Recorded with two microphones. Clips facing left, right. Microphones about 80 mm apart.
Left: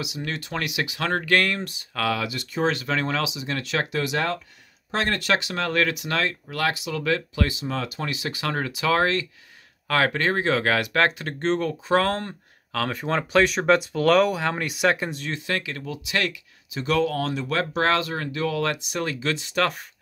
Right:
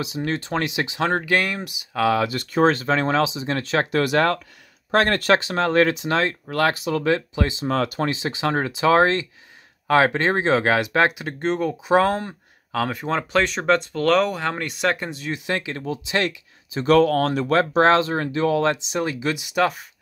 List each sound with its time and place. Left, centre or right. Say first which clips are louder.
0.0 s speech: right 5 dB; right; by 2.0 s centre
2.0 s speech: right 6 dB; right
4.0 s speech: right 6 dB; right
6.4 s speech: right 5 dB; right
7.1 s speech: right 1 dB; right
7.6 s speech: right 7 dB; right
8.1 s speech: right 5 dB; right; by 15.3 s centre
15.3 s speech: right 2 dB; right
16.8 s speech: right 7 dB; right
17.6 s speech: right 6 dB; right; by 19.7 s centre